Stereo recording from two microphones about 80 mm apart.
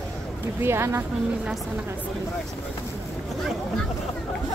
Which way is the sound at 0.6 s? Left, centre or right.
Right.